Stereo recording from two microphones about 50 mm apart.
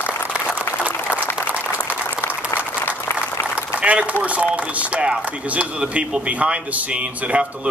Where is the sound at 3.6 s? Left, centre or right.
Right.